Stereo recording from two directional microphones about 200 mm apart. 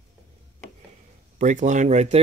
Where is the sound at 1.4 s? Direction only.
40° right (ahead or behind).